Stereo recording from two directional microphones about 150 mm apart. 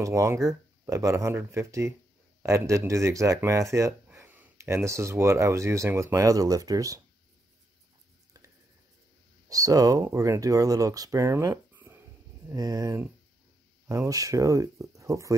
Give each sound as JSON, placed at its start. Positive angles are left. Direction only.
{"t": 0.0, "sound": "speech", "side_deg": -20}
{"t": 9.5, "sound": "speech", "side_deg": -25}